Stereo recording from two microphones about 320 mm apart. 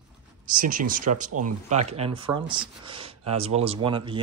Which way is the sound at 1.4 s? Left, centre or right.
Right.